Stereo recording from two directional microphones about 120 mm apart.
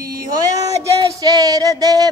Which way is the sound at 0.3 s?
30° right (ahead or behind).